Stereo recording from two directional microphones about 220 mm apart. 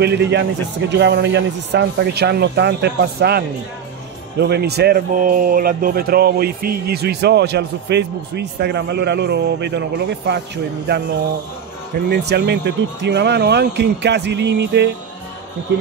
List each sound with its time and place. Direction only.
0.0 s speech: 50° right (ahead or behind)
12.1 s speech: 50° right (ahead or behind)